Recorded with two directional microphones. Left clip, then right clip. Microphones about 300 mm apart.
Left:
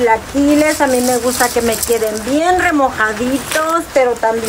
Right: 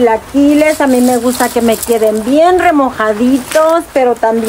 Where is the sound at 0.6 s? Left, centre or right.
Right.